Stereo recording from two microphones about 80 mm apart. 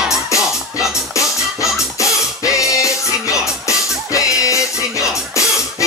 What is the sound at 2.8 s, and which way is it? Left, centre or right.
Music, left.